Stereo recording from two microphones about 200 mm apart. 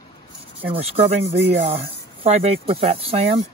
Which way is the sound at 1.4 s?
35° right (ahead or behind).